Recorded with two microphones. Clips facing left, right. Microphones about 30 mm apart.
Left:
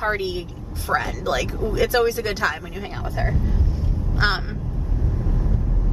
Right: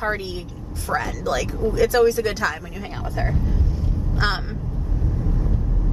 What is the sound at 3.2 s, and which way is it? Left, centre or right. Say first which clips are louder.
A woman's voice: even; centre.